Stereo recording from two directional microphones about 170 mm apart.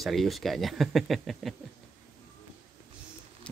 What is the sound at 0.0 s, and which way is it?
Speech, centre (ahead or behind).